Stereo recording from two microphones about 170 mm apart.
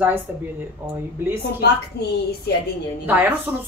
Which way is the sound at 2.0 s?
70° left (ahead or behind).